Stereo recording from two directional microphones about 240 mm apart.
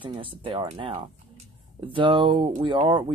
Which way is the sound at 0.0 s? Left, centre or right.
Right.